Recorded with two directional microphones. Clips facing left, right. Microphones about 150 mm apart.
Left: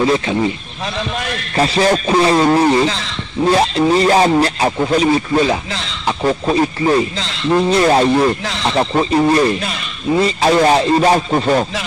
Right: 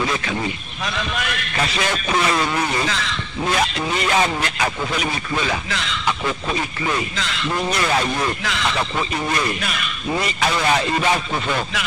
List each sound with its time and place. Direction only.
0.0 s a man's voice: 30° left (ahead or behind)